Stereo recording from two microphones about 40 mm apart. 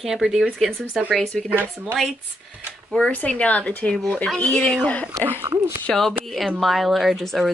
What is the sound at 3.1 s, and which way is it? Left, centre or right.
A woman's voice, left.